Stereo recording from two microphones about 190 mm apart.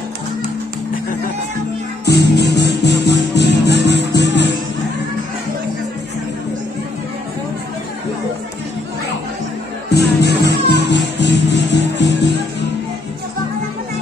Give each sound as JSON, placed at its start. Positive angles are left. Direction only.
{"t": 2.0, "sound": "music", "side_deg": 60}
{"t": 9.8, "sound": "music", "side_deg": 60}